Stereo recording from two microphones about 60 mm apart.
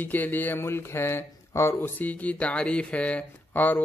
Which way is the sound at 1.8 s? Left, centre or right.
Left.